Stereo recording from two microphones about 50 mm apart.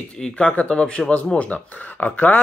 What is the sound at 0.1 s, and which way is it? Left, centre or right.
Speech, left.